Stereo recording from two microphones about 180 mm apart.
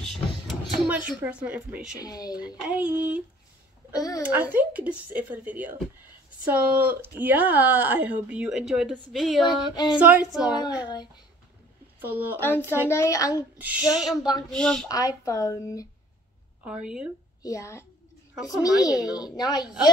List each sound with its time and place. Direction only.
0.0 s a sound: centre (ahead or behind)
2.0 s speech: 20° left (ahead or behind)
2.3 s speech: 5° right (ahead or behind)
3.9 s speech: 20° left (ahead or behind)
4.2 s speech: 10° right (ahead or behind)
9.4 s speech: 25° left (ahead or behind)
9.9 s speech: 5° right (ahead or behind)
12.0 s speech: 10° right (ahead or behind)
12.4 s a child's voice: 10° left (ahead or behind)
13.6 s a sound: 10° right (ahead or behind)
14.9 s speech: 20° left (ahead or behind)
16.6 s a sound: 5° right (ahead or behind)
17.4 s a child's voice: 15° left (ahead or behind)